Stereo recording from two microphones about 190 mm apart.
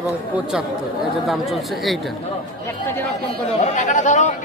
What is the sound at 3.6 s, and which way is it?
Speech, 40° left (ahead or behind).